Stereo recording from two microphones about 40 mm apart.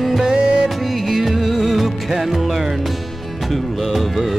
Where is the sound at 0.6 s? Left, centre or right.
Centre.